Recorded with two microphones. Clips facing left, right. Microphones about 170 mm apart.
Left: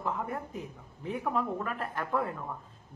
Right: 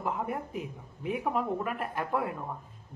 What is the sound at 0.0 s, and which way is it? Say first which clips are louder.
Speech: right 1 dB; 20° right (ahead or behind).